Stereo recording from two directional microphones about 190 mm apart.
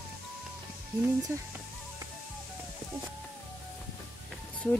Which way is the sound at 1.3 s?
15° right (ahead or behind).